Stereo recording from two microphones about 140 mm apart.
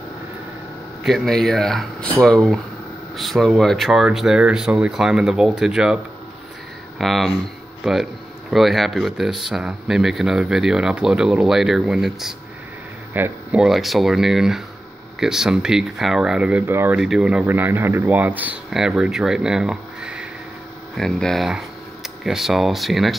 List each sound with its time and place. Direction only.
1.0 s speech: centre (ahead or behind)
7.0 s speech: centre (ahead or behind); by 17.0 s 15° right (ahead or behind)
17.0 s speech: 5° right (ahead or behind)